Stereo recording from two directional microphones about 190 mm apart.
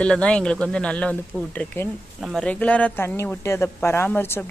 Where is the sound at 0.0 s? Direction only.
5° left (ahead or behind).